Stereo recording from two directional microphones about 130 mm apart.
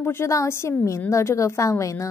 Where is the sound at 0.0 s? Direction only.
20° left (ahead or behind).